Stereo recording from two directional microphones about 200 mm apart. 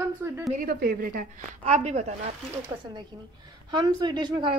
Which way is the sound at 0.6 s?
50° right (ahead or behind).